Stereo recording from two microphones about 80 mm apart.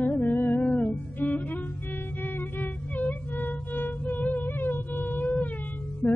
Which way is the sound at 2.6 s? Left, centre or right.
Left.